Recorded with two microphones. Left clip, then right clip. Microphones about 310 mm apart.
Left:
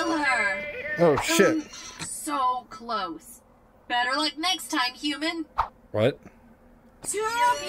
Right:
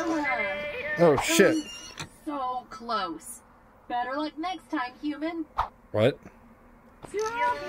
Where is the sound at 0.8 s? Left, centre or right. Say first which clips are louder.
Even; centre.